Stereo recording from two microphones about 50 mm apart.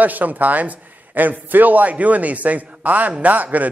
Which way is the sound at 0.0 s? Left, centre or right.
Right.